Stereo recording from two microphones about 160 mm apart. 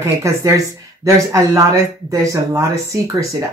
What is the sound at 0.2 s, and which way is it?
Speech, 20° right (ahead or behind).